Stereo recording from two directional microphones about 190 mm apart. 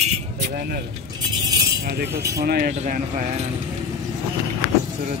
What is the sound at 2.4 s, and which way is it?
Speech, 55° right (ahead or behind).